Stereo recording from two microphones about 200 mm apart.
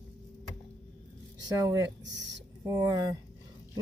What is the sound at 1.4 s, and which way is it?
A woman's voice, 15° right (ahead or behind).